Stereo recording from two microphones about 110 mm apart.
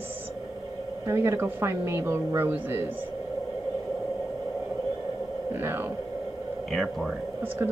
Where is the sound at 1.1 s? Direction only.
25° right (ahead or behind).